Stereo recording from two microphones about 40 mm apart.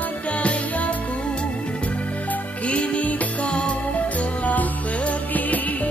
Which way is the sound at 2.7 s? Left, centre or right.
Left.